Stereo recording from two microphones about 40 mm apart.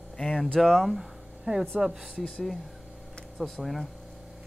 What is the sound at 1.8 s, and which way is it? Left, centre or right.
Speech, centre.